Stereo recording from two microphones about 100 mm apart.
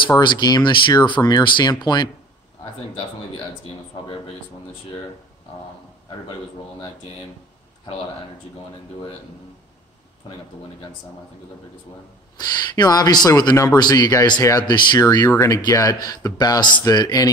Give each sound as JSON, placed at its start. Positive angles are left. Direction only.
{"t": 0.2, "sound": "speech", "side_deg": 45}
{"t": 12.4, "sound": "speech", "side_deg": 40}
{"t": 15.0, "sound": "speech", "side_deg": 40}